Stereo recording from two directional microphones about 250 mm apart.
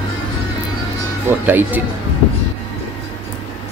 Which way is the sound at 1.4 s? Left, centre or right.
Centre.